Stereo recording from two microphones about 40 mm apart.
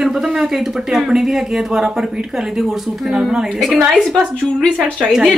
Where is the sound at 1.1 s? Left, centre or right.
Centre.